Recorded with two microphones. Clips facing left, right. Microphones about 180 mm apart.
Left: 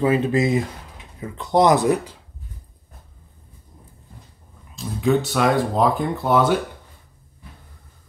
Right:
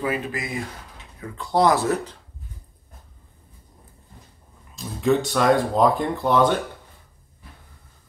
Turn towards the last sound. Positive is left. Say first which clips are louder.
# left 1 dB
turn(degrees=5)  # may be behind; listen again after turning